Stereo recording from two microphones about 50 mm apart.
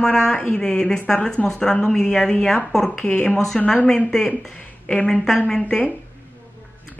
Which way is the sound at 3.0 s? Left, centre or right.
Left.